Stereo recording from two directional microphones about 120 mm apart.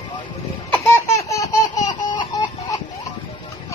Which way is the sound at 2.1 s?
35° left (ahead or behind).